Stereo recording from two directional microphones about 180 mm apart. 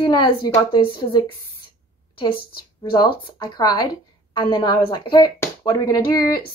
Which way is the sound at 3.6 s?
20° left (ahead or behind).